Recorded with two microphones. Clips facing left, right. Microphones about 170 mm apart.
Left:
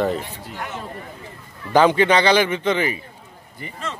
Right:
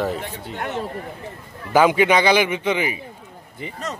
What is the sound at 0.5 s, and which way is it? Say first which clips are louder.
Speech: right 4 dB; 60° right (ahead or behind).